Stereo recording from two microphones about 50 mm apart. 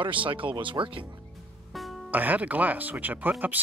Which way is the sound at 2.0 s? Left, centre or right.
Right.